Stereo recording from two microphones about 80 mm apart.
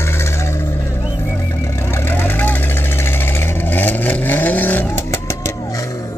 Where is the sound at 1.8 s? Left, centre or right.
Left.